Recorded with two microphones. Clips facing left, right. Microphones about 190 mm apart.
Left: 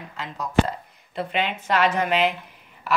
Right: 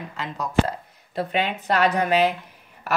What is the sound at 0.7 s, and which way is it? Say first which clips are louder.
A woman's voice: right 1 dB; 40° right (ahead or behind).